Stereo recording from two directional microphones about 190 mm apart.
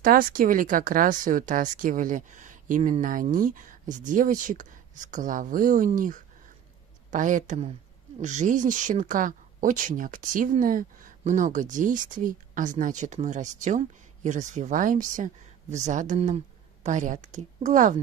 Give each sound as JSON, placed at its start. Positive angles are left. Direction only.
{"t": 0.0, "sound": "speech", "side_deg": -50}